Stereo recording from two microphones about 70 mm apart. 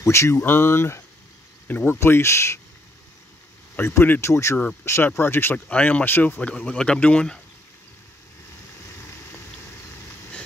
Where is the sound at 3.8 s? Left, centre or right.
Left.